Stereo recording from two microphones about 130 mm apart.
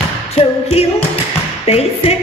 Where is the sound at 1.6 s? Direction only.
50° left (ahead or behind).